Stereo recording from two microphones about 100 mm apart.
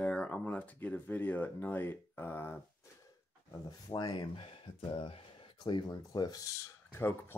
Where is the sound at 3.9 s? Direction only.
45° left (ahead or behind).